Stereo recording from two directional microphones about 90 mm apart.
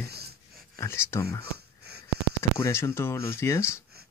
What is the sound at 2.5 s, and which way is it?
Speech, 30° left (ahead or behind).